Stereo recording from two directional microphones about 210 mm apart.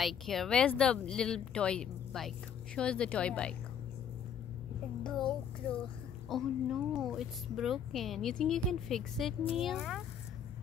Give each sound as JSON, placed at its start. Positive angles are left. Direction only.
{"t": 0.0, "sound": "speech", "side_deg": 0}
{"t": 5.0, "sound": "a child's voice", "side_deg": 5}